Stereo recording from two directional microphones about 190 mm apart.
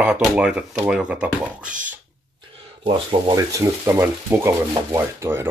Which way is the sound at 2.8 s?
25° right (ahead or behind).